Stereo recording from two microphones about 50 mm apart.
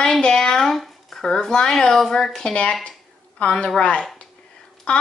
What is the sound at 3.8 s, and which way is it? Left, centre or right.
Speech, left.